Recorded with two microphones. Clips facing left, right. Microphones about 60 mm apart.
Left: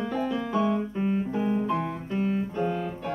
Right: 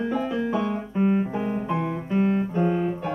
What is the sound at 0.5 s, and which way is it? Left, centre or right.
Piano, right.